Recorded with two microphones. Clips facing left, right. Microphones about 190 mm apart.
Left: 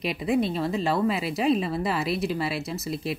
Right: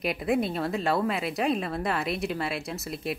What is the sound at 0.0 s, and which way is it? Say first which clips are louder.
Speech: left 2 dB; centre (ahead or behind).